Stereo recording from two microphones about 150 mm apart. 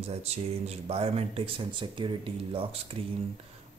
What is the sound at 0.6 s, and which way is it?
A man's voice, 40° right (ahead or behind).